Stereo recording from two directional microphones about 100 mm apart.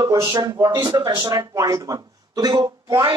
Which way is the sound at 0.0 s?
40° right (ahead or behind).